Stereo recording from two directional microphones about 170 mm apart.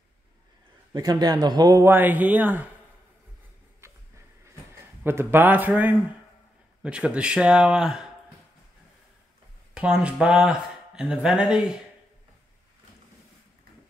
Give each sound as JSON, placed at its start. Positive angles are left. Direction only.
{"t": 0.9, "sound": "a man's voice", "side_deg": -25}
{"t": 3.8, "sound": "a sound", "side_deg": -15}
{"t": 4.7, "sound": "speech", "side_deg": -15}
{"t": 9.8, "sound": "speech", "side_deg": -5}